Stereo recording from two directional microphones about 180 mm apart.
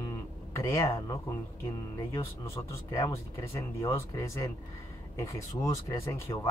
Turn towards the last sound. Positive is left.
turn(degrees=15)  # may be behind; listen again after turning